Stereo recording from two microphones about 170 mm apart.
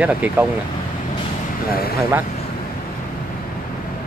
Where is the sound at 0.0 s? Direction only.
10° right (ahead or behind).